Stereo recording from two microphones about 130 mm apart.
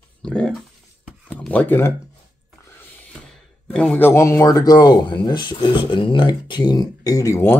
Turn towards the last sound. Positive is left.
turn(degrees=25)  # may be behind; listen again after turning